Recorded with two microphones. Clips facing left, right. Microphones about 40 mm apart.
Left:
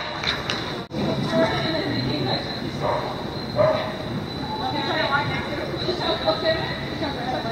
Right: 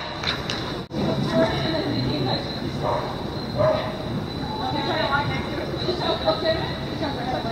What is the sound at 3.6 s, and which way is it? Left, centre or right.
Dog, centre.